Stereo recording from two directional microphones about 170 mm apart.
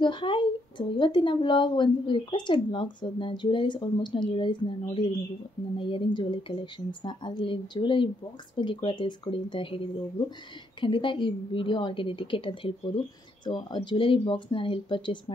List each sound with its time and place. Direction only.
0.0 s speech: 30° left (ahead or behind)